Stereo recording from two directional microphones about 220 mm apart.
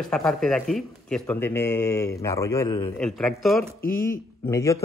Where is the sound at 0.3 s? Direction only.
Centre (ahead or behind).